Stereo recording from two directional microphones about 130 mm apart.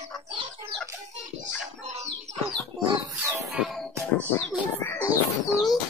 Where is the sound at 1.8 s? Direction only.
60° right (ahead or behind).